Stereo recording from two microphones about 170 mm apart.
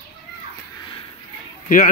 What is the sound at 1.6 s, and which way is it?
Speech, 55° left (ahead or behind).